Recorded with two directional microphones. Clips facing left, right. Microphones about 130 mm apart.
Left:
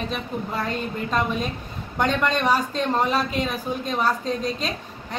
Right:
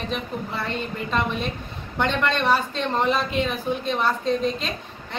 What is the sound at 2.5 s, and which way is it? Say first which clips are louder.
Speech: left 1 dB; 40° left (ahead or behind).